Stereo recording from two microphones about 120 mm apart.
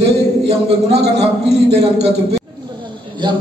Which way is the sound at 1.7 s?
60° right (ahead or behind).